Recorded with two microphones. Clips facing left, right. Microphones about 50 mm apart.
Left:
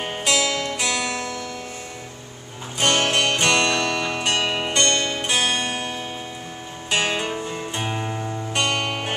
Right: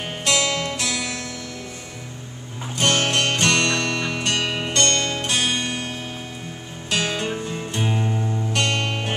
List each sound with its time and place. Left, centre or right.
0.0 s music: centre
1.1 s music: centre
2.8 s music: centre
6.9 s music: centre